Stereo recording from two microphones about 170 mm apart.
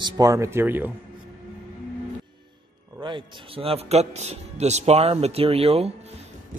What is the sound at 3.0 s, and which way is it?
A man's voice, 30° right (ahead or behind).